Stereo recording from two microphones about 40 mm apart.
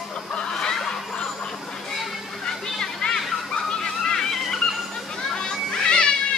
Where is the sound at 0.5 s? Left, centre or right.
Centre.